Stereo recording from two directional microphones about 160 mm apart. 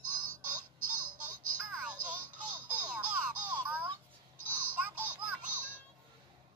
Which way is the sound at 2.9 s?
10° right (ahead or behind).